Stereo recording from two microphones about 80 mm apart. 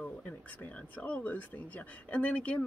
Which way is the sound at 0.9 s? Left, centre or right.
Centre.